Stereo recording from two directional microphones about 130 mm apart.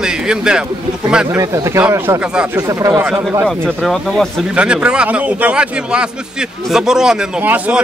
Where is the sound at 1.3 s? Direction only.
25° right (ahead or behind).